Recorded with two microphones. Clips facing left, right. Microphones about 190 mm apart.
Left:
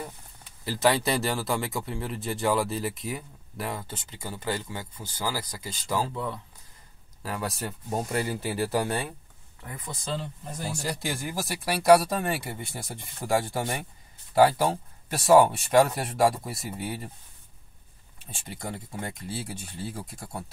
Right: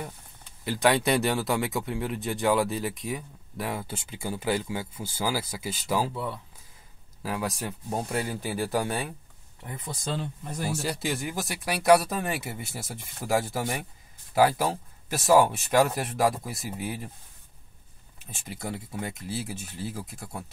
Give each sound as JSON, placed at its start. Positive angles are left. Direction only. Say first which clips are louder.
{"t": 0.7, "sound": "speech", "louder": "right 1 dB", "side_deg": 0}
{"t": 3.7, "sound": "speech", "louder": "right 3 dB", "side_deg": -10}
{"t": 9.6, "sound": "speech", "louder": "right 1 dB", "side_deg": -25}
{"t": 10.7, "sound": "speech", "louder": "right 2 dB", "side_deg": 0}
{"t": 18.2, "sound": "speech", "louder": "right 1 dB", "side_deg": -5}